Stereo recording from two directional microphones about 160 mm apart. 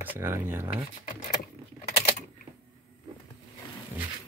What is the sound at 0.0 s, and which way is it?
Speech, 15° right (ahead or behind).